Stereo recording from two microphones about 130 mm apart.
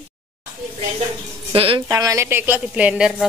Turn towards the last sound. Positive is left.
turn(degrees=-10)  # may be behind; listen again after turning